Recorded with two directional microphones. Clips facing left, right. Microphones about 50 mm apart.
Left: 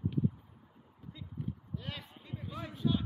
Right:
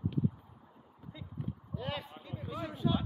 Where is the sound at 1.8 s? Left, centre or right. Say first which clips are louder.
Right 6 dB; centre.